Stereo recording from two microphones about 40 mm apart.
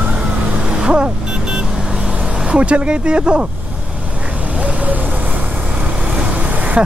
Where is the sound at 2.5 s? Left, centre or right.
Right.